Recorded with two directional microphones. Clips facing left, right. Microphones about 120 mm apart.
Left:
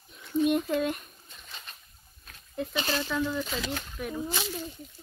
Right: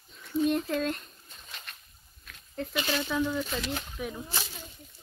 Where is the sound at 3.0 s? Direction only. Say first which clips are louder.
Right 2 dB; 5° right (ahead or behind).